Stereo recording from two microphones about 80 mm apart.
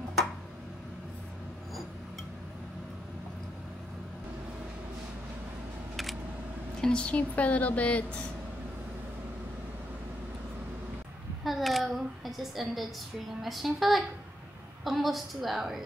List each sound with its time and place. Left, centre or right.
6.8 s a woman's voice: centre
11.4 s a sound: centre
13.4 s a woman's voice: centre